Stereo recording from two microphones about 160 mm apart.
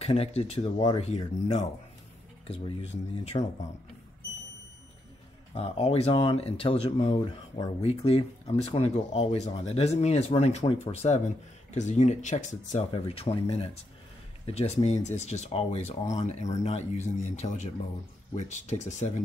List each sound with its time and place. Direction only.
0.0 s speech: 40° left (ahead or behind)
5.5 s speech: 40° left (ahead or behind)
12.9 s speech: 35° left (ahead or behind)